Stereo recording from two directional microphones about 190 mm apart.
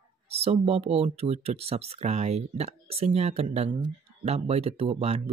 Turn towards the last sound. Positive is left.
turn(degrees=-30)  # may be behind; listen again after turning